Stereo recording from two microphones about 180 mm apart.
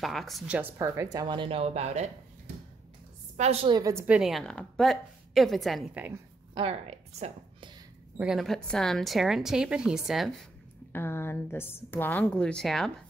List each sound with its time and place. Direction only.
0.0 s a woman's voice: centre (ahead or behind)
0.7 s speech: 20° right (ahead or behind)
4.0 s a woman's voice: 5° right (ahead or behind)
6.5 s a woman's voice: 35° right (ahead or behind)
8.2 s a woman's voice: centre (ahead or behind)
10.9 s a woman's voice: 10° left (ahead or behind)